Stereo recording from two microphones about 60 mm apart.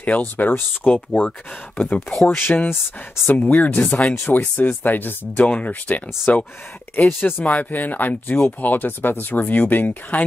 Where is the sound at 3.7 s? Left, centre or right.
Centre.